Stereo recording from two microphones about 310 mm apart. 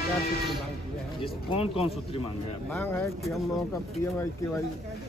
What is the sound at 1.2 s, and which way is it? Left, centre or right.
Speech, centre.